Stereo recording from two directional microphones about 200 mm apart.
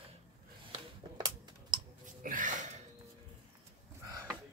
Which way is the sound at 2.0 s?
40° right (ahead or behind).